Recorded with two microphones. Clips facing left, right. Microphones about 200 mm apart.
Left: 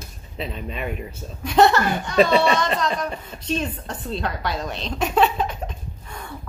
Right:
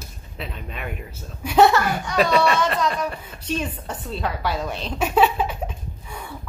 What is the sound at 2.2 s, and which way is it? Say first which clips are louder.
Speech: left 2 dB; 30° left (ahead or behind).